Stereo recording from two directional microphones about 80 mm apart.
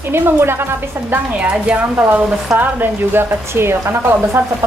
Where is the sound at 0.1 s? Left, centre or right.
Right.